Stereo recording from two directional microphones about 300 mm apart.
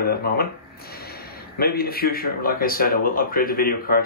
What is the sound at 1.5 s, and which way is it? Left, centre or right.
A man's voice, left.